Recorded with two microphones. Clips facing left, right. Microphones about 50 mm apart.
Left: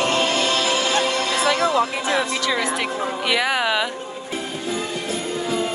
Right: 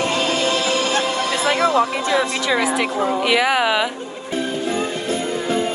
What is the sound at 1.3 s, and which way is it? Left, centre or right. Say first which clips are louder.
Music: right 2 dB; right.